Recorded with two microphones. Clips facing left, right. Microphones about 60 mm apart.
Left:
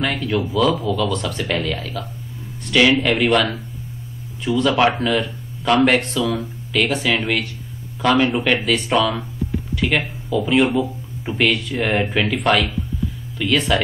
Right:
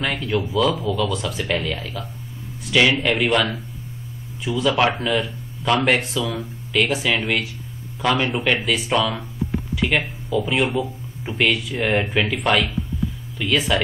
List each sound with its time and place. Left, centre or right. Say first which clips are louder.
0.0 s speech: left 2 dB; centre
10.4 s speech: left 6 dB; centre